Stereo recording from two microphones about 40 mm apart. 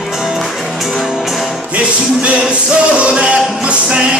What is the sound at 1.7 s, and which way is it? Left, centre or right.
Music, right.